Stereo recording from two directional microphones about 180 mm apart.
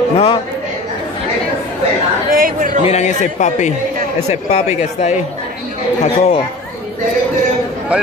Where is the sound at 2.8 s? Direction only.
40° left (ahead or behind).